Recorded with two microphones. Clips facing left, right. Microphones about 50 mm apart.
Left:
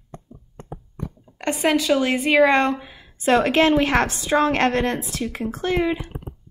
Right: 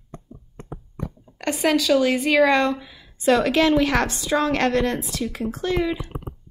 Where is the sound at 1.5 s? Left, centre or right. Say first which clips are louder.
Even; left.